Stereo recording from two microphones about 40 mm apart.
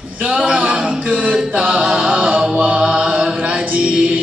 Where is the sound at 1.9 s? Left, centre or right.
Right.